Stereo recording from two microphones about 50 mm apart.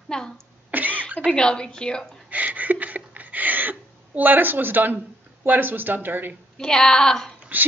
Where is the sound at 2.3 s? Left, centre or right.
Right.